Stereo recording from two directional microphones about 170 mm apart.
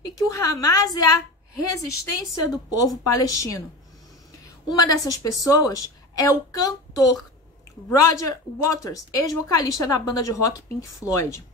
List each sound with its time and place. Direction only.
0.3 s a woman's voice: 20° left (ahead or behind)
4.6 s speech: 20° left (ahead or behind)
7.9 s speech: 20° left (ahead or behind)